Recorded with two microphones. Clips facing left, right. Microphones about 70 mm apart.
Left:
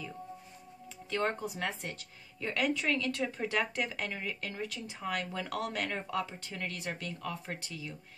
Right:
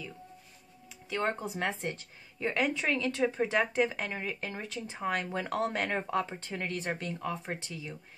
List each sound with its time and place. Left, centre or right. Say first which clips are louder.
1.4 s speech: right 3 dB; right